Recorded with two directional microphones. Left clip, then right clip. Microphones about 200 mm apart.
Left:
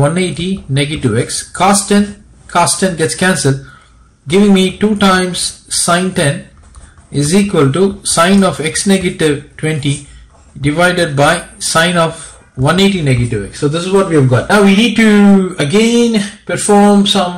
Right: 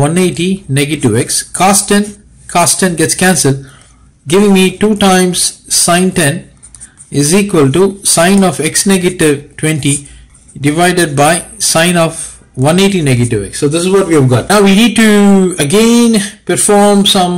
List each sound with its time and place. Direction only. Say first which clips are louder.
0.0 s speech: right 3 dB; 30° right (ahead or behind)